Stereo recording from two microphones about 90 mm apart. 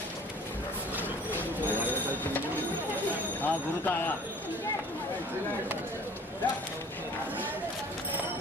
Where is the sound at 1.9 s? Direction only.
20° left (ahead or behind).